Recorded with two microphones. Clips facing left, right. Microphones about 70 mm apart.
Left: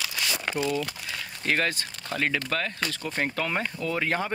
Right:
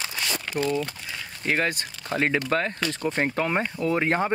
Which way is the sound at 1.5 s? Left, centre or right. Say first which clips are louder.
Right 1 dB; centre.